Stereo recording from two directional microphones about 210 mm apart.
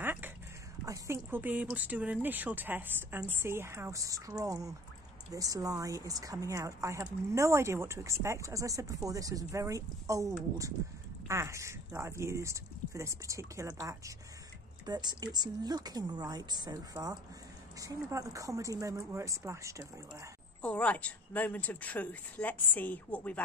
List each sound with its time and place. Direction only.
0.0 s a sound: 10° right (ahead or behind)
0.8 s a woman's voice: 15° right (ahead or behind)
20.6 s speech: 5° left (ahead or behind)